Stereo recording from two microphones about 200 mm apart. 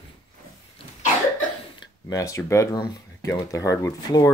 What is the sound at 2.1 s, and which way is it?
Speech, 15° left (ahead or behind).